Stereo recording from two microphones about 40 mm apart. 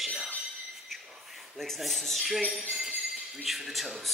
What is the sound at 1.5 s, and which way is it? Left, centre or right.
Speech, centre.